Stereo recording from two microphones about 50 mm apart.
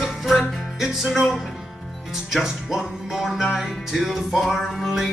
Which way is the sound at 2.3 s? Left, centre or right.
Centre.